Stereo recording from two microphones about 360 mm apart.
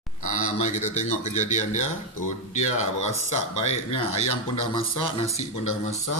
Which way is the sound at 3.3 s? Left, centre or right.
Left.